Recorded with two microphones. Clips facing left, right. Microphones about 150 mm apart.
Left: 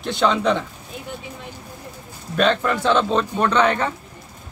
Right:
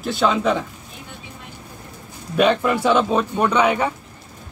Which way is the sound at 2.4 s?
10° right (ahead or behind).